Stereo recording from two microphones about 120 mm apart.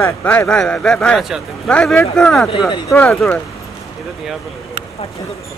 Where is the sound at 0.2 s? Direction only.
15° left (ahead or behind).